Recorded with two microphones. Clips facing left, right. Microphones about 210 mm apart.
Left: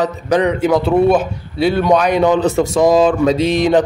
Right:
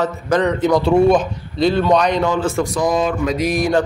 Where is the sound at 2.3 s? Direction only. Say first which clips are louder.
Left 5 dB; 20° left (ahead or behind).